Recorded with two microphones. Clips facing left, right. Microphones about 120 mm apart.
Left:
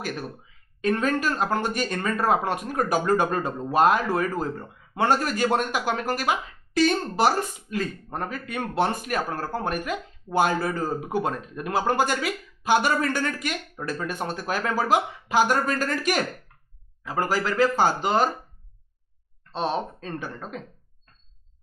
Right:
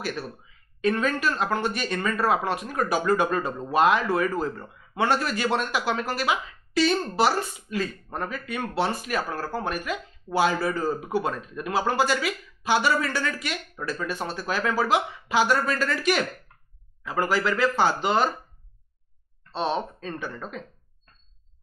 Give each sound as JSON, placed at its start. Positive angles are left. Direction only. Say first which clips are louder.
{"t": 0.7, "sound": "speech", "louder": "left 1 dB", "side_deg": 40}
{"t": 19.5, "sound": "speech", "louder": "even", "side_deg": 45}